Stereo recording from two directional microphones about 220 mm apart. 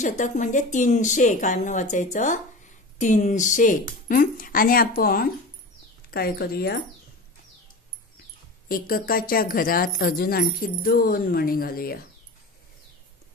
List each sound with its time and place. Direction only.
0.2 s speech: 35° left (ahead or behind)
8.6 s speech: 40° left (ahead or behind)